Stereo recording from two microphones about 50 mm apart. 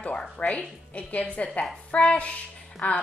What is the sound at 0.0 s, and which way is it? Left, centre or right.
A woman's voice, left.